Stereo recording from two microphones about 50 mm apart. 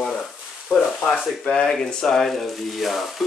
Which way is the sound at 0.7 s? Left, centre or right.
Left.